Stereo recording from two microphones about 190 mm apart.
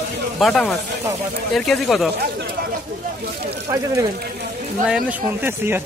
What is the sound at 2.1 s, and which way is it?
Speech, 55° right (ahead or behind).